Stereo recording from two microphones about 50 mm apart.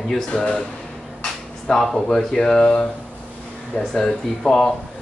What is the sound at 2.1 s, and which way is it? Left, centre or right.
Speech, centre.